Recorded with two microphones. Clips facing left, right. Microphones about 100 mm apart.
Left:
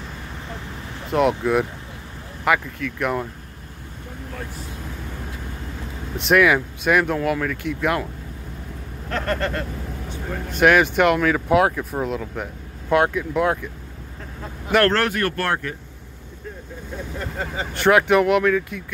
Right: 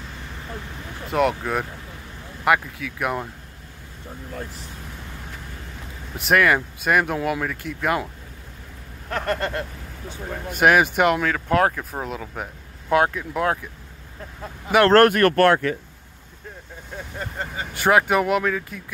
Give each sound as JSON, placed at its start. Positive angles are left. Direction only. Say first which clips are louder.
{"t": 1.1, "sound": "speech", "louder": "left 3 dB", "side_deg": 0}
{"t": 6.1, "sound": "speech", "louder": "left 2 dB", "side_deg": 0}
{"t": 9.1, "sound": "vehicle", "louder": "left 1 dB", "side_deg": -15}
{"t": 10.5, "sound": "speech", "louder": "left 1 dB", "side_deg": -5}
{"t": 14.9, "sound": "speech", "louder": "right 7 dB", "side_deg": -55}
{"t": 17.7, "sound": "speech", "louder": "left 2 dB", "side_deg": -5}